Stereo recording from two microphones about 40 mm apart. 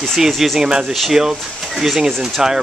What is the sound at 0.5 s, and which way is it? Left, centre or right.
Speech, centre.